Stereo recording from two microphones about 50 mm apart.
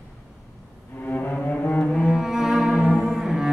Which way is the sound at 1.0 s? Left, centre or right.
Left.